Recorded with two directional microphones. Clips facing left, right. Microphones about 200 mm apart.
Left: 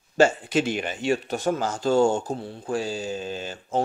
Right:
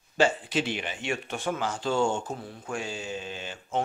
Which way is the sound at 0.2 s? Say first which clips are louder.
Left 5 dB; 45° left (ahead or behind).